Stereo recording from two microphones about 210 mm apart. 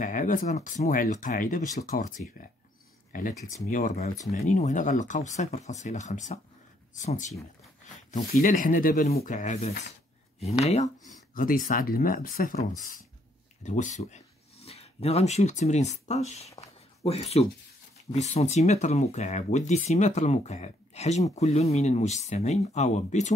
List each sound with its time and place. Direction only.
0.0 s speech: 40° left (ahead or behind)
3.3 s speech: 15° left (ahead or behind)
3.6 s speech: 35° left (ahead or behind)
11.3 s speech: 40° left (ahead or behind)
16.5 s a sound: 30° left (ahead or behind)
18.1 s speech: 35° left (ahead or behind)